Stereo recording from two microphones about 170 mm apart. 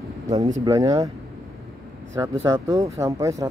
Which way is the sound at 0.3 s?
35° right (ahead or behind).